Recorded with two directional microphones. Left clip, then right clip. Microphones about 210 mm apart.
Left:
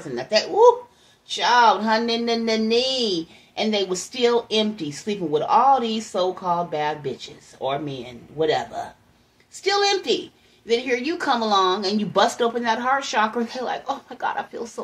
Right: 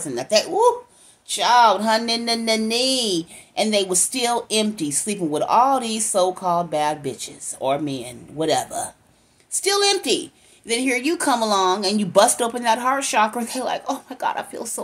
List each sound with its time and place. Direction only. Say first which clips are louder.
0.0 s a woman's voice: right 2 dB; 40° right (ahead or behind)